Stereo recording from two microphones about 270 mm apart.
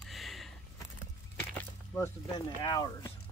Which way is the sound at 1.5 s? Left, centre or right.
Centre.